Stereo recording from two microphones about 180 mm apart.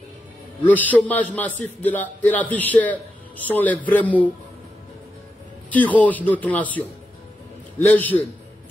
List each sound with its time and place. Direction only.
0.7 s a man's voice: 10° left (ahead or behind)
5.7 s a man's voice: 10° left (ahead or behind)